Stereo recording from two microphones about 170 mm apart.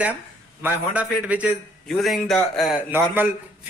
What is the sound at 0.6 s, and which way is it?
A man's voice, 10° right (ahead or behind).